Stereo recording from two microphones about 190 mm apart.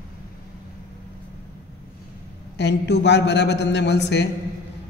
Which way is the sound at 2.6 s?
65° left (ahead or behind).